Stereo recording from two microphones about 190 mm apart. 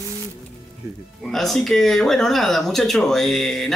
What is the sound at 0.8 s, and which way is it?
Speech, 15° right (ahead or behind).